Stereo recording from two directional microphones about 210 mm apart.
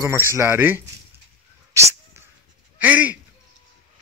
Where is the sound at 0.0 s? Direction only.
10° right (ahead or behind).